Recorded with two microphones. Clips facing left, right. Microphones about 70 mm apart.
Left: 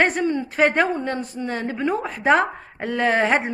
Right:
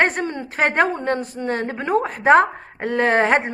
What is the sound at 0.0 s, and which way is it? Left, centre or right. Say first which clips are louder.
Speech: even; right.